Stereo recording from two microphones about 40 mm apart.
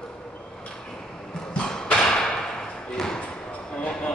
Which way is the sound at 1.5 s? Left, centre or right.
Left.